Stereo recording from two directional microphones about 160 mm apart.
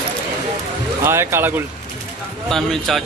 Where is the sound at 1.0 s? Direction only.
15° right (ahead or behind).